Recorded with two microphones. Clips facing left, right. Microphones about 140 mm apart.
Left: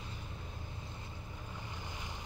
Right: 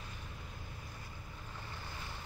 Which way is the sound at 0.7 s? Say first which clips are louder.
Left 2 dB; 25° left (ahead or behind).